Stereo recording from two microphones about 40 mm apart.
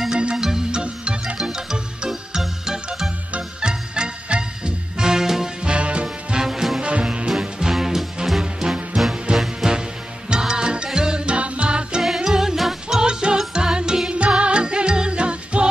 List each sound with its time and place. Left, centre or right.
0.1 s music: right
5.6 s music: right
6.3 s music: centre
6.8 s music: right
7.2 s music: centre
10.3 s music: centre
12.3 s jingle bell: centre
13.0 s music: centre